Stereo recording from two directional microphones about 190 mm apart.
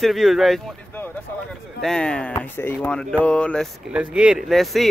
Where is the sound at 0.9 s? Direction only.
10° left (ahead or behind).